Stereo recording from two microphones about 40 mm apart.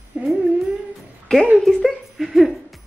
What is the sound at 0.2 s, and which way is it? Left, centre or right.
Humming, right.